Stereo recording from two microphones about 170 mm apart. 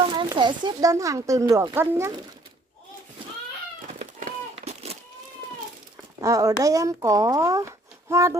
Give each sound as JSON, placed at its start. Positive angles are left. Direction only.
{"t": 0.0, "sound": "a sound", "side_deg": -30}
{"t": 0.3, "sound": "speech", "side_deg": -25}
{"t": 4.0, "sound": "run", "side_deg": -40}
{"t": 6.2, "sound": "speech", "side_deg": -20}